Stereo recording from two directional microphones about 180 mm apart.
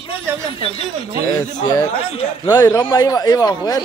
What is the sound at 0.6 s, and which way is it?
Speech, 30° left (ahead or behind).